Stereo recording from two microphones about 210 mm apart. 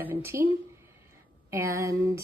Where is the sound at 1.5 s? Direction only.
15° right (ahead or behind).